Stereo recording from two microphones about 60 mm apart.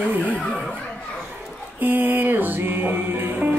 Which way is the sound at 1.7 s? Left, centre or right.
Right.